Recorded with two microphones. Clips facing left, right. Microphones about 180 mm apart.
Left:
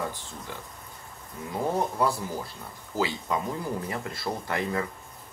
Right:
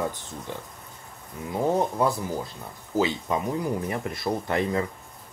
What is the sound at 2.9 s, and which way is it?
Speech, 20° right (ahead or behind).